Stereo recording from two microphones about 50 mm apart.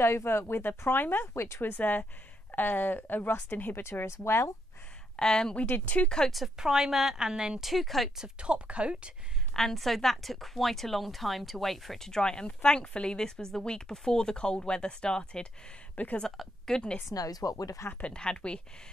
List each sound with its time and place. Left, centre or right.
0.0 s speech: left
1.2 s speech: left
1.6 s a woman's voice: left
3.8 s speech: left
5.1 s a woman's voice: centre
5.6 s speech: left
6.0 s a woman's voice: centre
6.6 s a woman's voice: centre
7.6 s speech: centre
8.2 s a woman's voice: right
9.5 s a woman's voice: centre
16.0 s a woman's voice: left
16.3 s a woman's voice: centre
18.0 s speech: centre